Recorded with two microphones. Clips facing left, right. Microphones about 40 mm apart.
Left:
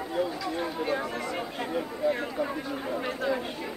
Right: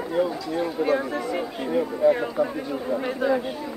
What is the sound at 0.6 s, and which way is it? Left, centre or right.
A man's voice, centre.